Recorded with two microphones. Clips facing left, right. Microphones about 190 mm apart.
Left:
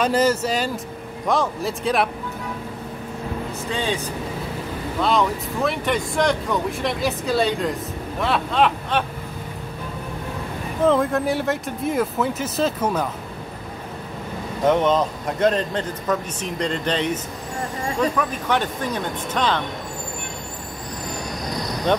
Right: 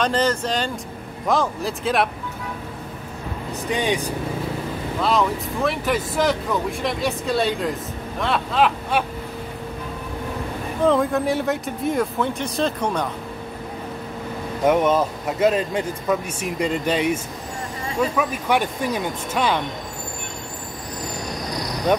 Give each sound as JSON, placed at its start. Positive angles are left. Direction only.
{"t": 0.0, "sound": "speech", "side_deg": 10}
{"t": 3.7, "sound": "a man's voice", "side_deg": -15}
{"t": 5.0, "sound": "speech", "side_deg": 0}
{"t": 10.8, "sound": "speech", "side_deg": 0}
{"t": 14.7, "sound": "a man's voice", "side_deg": -10}